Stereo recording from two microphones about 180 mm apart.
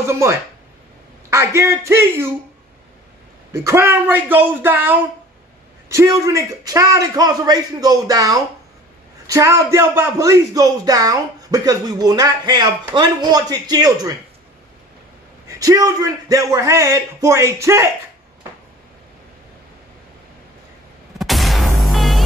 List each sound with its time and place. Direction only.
0.0 s a man's voice: 15° right (ahead or behind)
3.5 s a man's voice: 15° right (ahead or behind)
15.4 s a man's voice: 20° right (ahead or behind)
21.2 s music: centre (ahead or behind)